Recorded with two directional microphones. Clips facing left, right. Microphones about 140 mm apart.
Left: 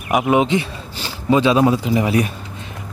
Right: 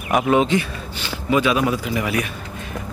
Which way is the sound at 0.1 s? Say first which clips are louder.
Left 1 dB; 15° left (ahead or behind).